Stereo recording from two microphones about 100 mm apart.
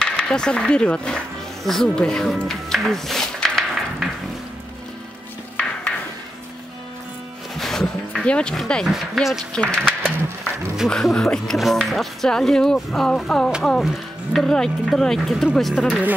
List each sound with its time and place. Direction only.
0.0 s music: 10° left (ahead or behind)
7.5 s speech: 5° left (ahead or behind)
9.5 s speech: 10° left (ahead or behind)